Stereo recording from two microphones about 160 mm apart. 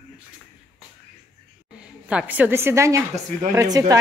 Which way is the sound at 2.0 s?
10° right (ahead or behind).